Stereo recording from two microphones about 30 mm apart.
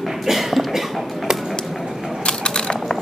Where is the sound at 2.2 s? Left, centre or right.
Left.